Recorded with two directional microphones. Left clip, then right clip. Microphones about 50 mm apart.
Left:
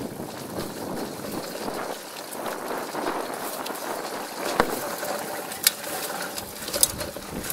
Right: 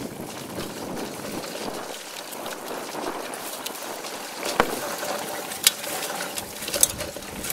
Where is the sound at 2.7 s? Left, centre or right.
Left.